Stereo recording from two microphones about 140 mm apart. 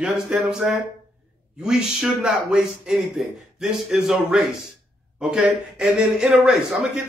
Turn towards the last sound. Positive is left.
turn(degrees=0)  # may be behind; listen again after turning